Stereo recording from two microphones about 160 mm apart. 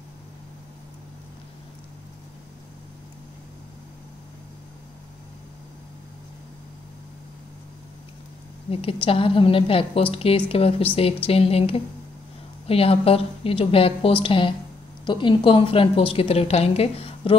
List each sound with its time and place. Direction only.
8.6 s a woman's voice: 35° left (ahead or behind)